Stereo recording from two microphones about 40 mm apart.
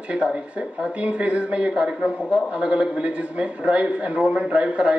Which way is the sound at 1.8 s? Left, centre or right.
Right.